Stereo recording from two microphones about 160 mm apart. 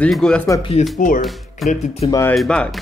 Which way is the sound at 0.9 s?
55° left (ahead or behind).